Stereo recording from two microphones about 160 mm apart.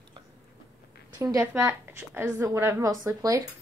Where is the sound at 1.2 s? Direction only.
20° right (ahead or behind).